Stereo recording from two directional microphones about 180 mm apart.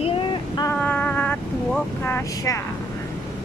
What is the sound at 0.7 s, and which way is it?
Vehicle, 10° left (ahead or behind).